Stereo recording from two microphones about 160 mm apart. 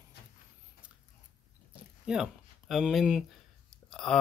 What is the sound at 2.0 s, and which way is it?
Speech, 5° right (ahead or behind).